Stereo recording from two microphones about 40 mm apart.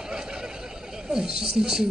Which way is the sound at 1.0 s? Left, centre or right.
Centre.